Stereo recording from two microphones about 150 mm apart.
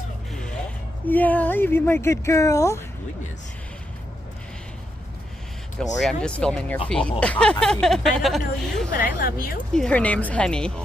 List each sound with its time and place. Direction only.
1.0 s speech: 10° left (ahead or behind)
5.8 s speech: 5° left (ahead or behind)
8.9 s speech: 70° left (ahead or behind)
9.8 s speech: 10° left (ahead or behind)